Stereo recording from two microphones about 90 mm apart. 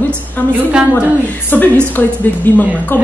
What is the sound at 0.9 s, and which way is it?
A woman's voice, 20° left (ahead or behind).